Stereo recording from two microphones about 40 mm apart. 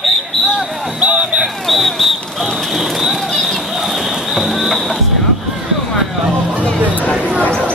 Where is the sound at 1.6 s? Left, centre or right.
Centre.